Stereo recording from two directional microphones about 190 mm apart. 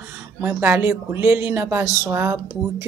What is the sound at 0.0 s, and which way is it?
A woman's voice, 10° right (ahead or behind).